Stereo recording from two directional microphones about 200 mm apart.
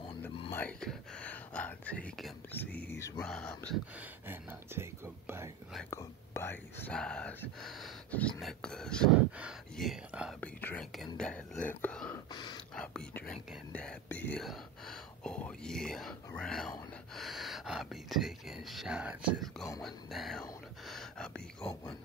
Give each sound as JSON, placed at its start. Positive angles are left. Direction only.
{"t": 0.5, "sound": "speech", "side_deg": 5}
{"t": 4.3, "sound": "speech", "side_deg": -10}
{"t": 5.9, "sound": "speech", "side_deg": 15}
{"t": 12.3, "sound": "speech", "side_deg": 20}
{"t": 12.7, "sound": "speech", "side_deg": 5}